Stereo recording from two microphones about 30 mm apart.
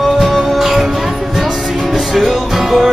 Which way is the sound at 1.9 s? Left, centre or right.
Centre.